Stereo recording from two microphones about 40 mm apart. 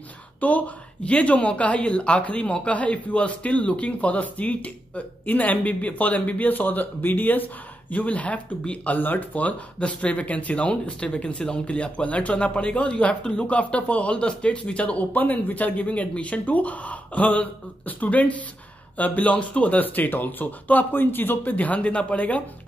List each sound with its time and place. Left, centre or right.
0.4 s speech: left
9.8 s speech: left
15.1 s speech: left
19.8 s speech: left
21.5 s speech: left